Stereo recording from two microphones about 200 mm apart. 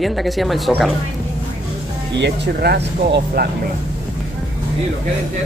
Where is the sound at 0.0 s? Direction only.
Centre (ahead or behind).